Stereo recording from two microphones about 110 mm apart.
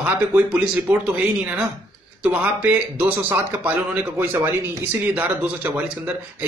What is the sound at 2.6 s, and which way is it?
Speech, 15° right (ahead or behind).